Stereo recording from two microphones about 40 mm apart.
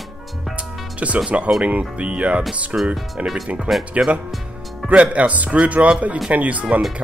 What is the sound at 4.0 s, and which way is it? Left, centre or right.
A man's voice, right.